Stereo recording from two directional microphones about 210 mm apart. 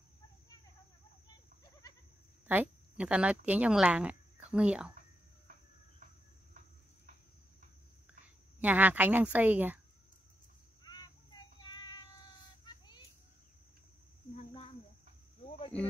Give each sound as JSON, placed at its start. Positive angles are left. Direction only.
{"t": 1.6, "sound": "goat", "side_deg": 20}
{"t": 2.4, "sound": "speech", "side_deg": -10}
{"t": 8.5, "sound": "speech", "side_deg": -10}
{"t": 10.8, "sound": "child singing", "side_deg": 20}
{"t": 12.6, "sound": "vehicle", "side_deg": 20}
{"t": 14.3, "sound": "a sound", "side_deg": 25}